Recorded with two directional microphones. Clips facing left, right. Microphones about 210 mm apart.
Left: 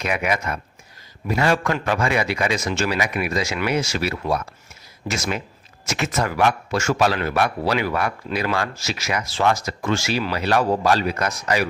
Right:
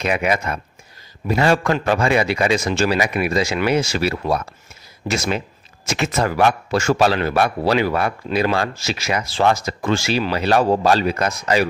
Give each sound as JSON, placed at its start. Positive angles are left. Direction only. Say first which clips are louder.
{"t": 0.0, "sound": "a man's voice", "louder": "right 3 dB", "side_deg": -30}